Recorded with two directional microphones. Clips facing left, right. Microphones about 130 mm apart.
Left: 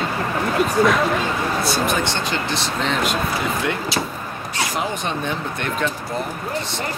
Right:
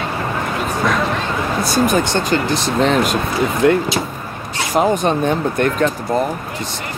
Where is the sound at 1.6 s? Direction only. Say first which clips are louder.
Right 5 dB; 45° right (ahead or behind).